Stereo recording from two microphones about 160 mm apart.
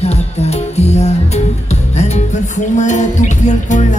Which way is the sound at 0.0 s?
40° left (ahead or behind).